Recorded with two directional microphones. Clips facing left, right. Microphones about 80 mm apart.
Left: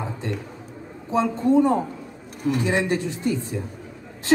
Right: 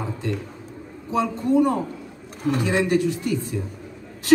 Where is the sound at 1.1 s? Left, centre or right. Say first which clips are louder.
Left 1 dB; left.